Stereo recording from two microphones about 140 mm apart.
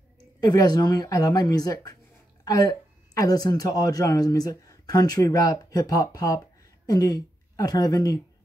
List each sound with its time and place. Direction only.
0.4 s a woman's voice: 30° left (ahead or behind)